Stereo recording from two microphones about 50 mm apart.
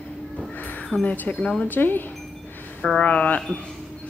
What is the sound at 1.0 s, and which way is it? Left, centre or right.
Speech, left.